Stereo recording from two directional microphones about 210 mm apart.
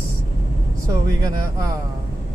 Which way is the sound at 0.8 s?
15° right (ahead or behind).